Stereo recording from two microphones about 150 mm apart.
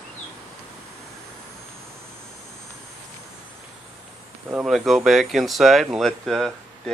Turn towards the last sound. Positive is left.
turn(degrees=0)  # may be behind; listen again after turning